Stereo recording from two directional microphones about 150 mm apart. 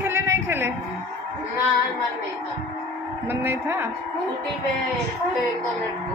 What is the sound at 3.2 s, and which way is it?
Speech, 15° right (ahead or behind).